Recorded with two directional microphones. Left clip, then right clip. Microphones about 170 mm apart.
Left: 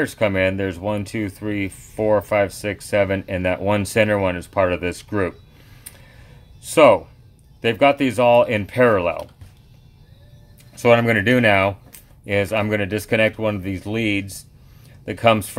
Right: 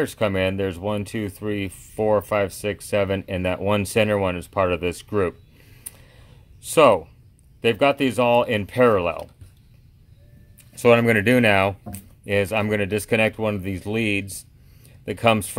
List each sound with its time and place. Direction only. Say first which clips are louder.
0.0 s speech: left 3 dB; 25° right (ahead or behind)
6.6 s speech: left 3 dB; 30° right (ahead or behind)
10.7 s speech: left 1 dB; 30° right (ahead or behind)